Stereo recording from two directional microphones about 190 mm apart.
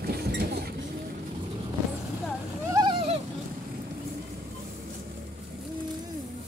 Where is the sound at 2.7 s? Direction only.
25° right (ahead or behind).